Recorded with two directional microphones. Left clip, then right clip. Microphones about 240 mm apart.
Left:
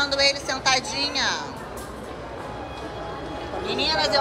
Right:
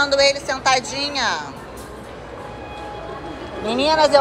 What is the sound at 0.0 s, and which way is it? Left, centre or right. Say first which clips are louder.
A woman's voice: right 5 dB; centre.